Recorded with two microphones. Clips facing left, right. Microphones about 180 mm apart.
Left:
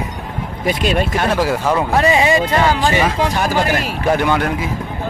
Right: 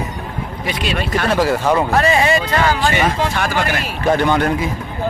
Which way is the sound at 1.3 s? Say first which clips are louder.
Right 3 dB; 5° left (ahead or behind).